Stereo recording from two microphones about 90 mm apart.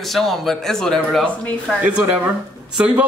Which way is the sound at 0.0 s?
Centre (ahead or behind).